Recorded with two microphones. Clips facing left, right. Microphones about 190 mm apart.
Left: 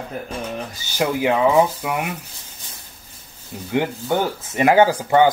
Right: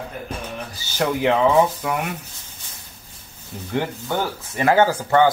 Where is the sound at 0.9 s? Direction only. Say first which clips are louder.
Even; 5° left (ahead or behind).